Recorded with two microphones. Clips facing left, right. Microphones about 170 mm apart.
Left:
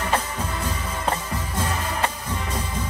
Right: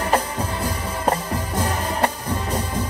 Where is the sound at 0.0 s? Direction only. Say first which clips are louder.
Right 4 dB; 35° right (ahead or behind).